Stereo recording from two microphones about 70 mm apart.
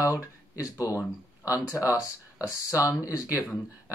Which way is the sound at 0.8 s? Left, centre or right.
Left.